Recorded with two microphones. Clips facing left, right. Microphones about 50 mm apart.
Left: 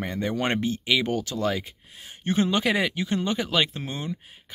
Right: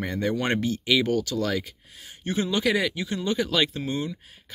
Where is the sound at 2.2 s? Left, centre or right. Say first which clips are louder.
Left 2 dB; left.